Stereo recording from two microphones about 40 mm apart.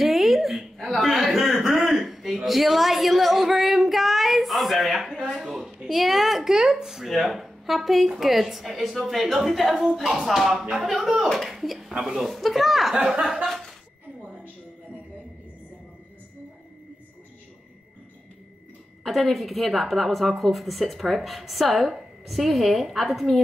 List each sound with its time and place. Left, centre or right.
0.0 s a sound: centre
5.5 s a sound: centre
6.4 s a sound: centre
8.2 s a woman's voice: centre
10.6 s speech: centre
11.2 s a woman's voice: centre
11.9 s a woman's voice: centre
12.2 s a woman's voice: centre
12.9 s speech: right
19.0 s a woman's voice: centre